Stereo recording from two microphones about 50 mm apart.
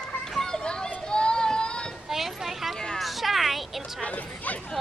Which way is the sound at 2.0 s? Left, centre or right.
Centre.